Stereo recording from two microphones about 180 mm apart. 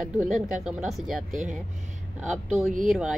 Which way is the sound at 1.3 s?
45° right (ahead or behind).